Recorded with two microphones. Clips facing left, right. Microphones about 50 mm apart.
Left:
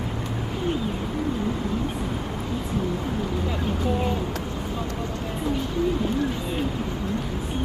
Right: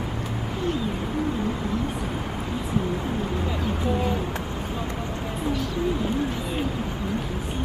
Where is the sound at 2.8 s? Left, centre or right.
Centre.